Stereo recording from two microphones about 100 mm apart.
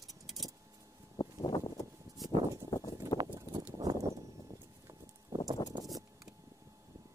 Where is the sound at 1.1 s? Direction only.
50° left (ahead or behind).